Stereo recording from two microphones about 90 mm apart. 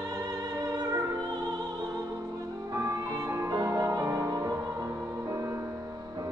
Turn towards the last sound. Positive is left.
turn(degrees=-40)  # may be behind; listen again after turning